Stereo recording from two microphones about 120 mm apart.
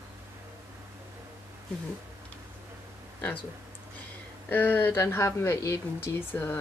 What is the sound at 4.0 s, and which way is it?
Speech, 15° left (ahead or behind).